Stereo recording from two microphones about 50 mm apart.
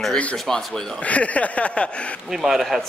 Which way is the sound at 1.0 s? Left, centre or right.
Left.